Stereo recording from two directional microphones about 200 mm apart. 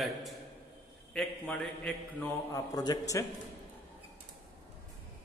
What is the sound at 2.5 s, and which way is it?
Speech, 20° left (ahead or behind).